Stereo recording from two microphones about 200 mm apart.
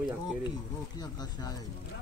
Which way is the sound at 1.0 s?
20° left (ahead or behind).